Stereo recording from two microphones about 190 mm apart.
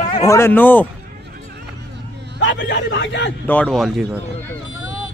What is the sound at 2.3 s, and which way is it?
Speech, 75° left (ahead or behind).